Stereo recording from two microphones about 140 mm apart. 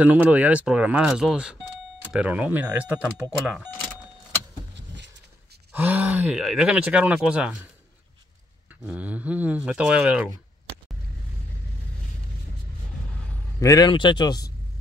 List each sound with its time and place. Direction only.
0.0 s speech: 10° right (ahead or behind)
5.7 s speech: 15° right (ahead or behind)
8.8 s speech: 10° right (ahead or behind)
13.6 s speech: 25° left (ahead or behind)